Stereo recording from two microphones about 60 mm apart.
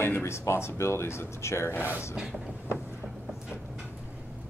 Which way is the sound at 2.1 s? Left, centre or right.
Centre.